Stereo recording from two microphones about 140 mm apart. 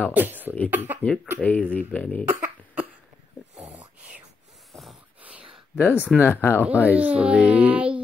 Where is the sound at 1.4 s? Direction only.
10° left (ahead or behind).